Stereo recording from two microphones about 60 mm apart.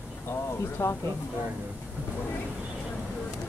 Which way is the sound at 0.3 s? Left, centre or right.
Left.